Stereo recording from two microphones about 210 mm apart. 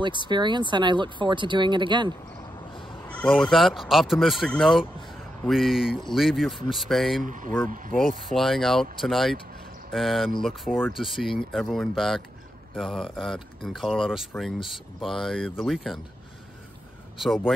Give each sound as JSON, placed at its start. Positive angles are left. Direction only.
{"t": 0.0, "sound": "speech", "side_deg": -20}
{"t": 2.7, "sound": "crow", "side_deg": 25}
{"t": 3.1, "sound": "speech", "side_deg": 5}
{"t": 7.2, "sound": "speech", "side_deg": -40}
{"t": 8.2, "sound": "speech", "side_deg": 0}